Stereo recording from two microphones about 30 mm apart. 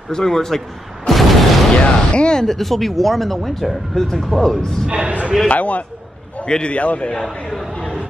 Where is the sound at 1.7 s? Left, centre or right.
Left.